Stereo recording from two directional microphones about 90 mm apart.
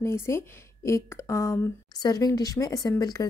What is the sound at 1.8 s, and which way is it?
Speech, 45° left (ahead or behind).